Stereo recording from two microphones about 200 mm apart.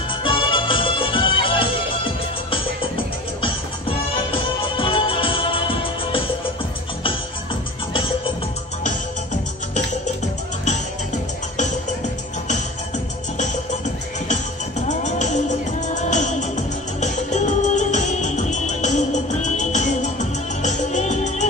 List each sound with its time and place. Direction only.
0.1 s music: 25° left (ahead or behind)
4.1 s music: 25° left (ahead or behind)
14.9 s music: 35° left (ahead or behind)